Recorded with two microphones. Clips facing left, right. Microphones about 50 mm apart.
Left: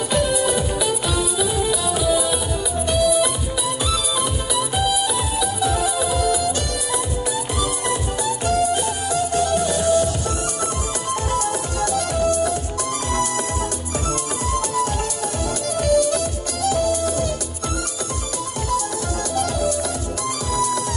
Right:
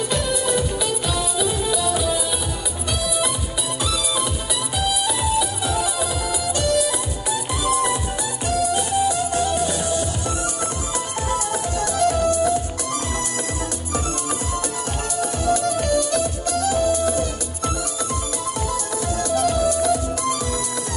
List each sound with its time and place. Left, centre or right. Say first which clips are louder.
0.1 s music: left 4 dB; centre
4.9 s music: right 1 dB; centre
8.5 s music: left 1 dB; centre
11.8 s music: right 1 dB; centre
16.7 s music: even; centre